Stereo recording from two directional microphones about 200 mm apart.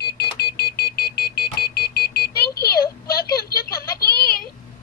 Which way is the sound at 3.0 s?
50° left (ahead or behind).